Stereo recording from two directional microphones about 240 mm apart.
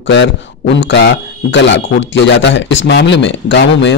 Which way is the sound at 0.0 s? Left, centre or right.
Left.